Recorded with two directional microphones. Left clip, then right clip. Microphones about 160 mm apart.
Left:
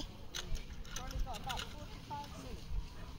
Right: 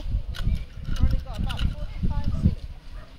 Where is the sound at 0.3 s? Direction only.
30° left (ahead or behind).